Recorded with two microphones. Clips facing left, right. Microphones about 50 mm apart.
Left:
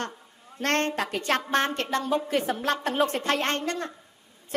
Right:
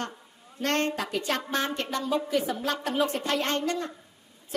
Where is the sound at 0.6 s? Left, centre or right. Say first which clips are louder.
Left 2 dB; left.